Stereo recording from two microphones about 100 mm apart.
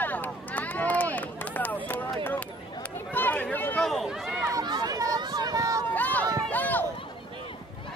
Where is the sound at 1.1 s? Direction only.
15° left (ahead or behind).